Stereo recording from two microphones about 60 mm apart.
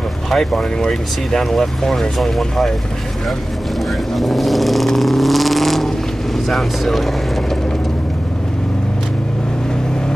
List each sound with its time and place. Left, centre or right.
0.3 s speech: centre
4.1 s vehicle: centre
6.5 s speech: centre